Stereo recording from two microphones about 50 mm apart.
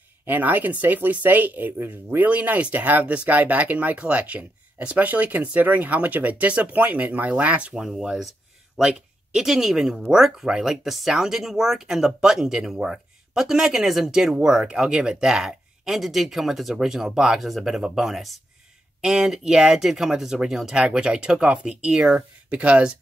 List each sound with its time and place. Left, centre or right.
0.3 s speech: right
7.7 s speech: centre; by 22.9 s right